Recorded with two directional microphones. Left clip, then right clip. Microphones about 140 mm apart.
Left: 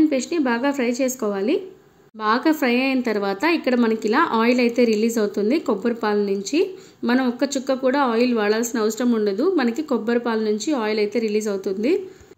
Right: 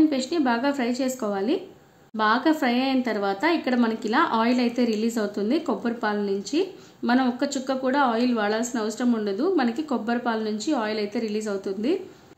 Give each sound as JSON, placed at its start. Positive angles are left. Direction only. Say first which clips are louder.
{"t": 0.3, "sound": "a woman's voice", "louder": "left 2 dB", "side_deg": 10}